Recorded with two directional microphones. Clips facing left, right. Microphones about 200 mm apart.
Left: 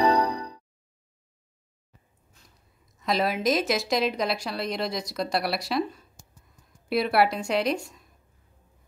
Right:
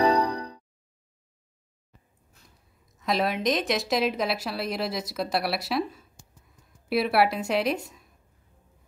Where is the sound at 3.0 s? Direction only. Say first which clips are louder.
Left 1 dB; centre (ahead or behind).